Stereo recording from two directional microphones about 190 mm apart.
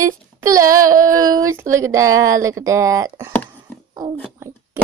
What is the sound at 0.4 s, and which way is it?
Child singing, 20° right (ahead or behind).